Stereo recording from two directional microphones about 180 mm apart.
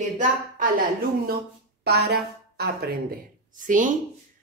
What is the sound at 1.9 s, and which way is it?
A woman's voice, 65° right (ahead or behind).